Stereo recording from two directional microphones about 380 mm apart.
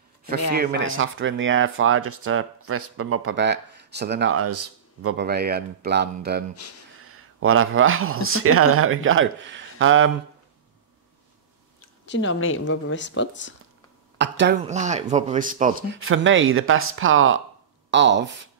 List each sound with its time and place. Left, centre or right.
0.5 s speech: right
12.1 s speech: left
14.1 s speech: right